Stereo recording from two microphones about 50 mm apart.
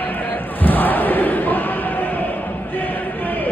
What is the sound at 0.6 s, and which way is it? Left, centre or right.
Crowd, left.